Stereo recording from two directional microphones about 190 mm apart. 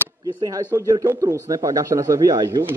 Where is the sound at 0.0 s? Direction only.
15° right (ahead or behind).